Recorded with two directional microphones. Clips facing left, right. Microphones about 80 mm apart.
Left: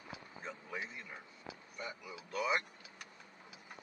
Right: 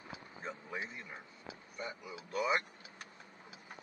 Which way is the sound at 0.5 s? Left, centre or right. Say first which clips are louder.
Right 2 dB; right.